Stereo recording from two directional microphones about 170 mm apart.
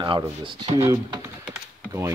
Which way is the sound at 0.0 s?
25° right (ahead or behind).